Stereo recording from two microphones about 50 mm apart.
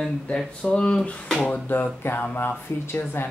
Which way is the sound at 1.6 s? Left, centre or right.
Left.